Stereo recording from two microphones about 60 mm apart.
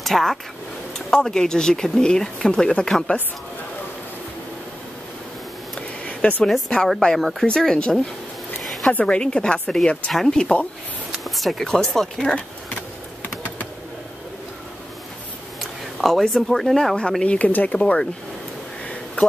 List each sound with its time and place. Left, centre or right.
0.0 s speech: centre
6.0 s a sound: left
6.4 s speech: centre
7.2 s speech: centre
7.4 s speech: centre
9.0 s speech: centre
11.1 s speech: centre
13.2 s typing: left
15.6 s speech: centre